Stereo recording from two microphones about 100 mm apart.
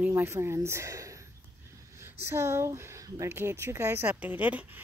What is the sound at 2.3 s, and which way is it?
Speech, 25° right (ahead or behind).